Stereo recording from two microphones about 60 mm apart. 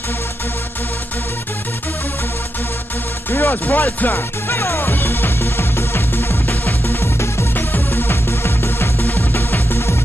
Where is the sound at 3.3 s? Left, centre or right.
Left.